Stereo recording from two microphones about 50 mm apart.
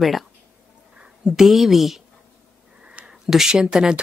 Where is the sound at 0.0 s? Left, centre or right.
Centre.